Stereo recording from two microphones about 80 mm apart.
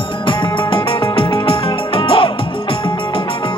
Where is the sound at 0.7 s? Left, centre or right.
Left.